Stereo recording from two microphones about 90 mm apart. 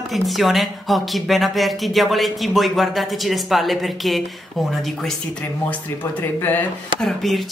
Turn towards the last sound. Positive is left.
turn(degrees=0)  # may be behind; listen again after turning